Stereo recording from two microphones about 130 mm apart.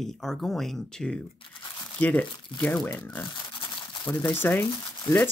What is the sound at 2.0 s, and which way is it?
Speech, 15° left (ahead or behind).